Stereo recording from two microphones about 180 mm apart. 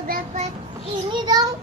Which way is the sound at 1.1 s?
25° right (ahead or behind).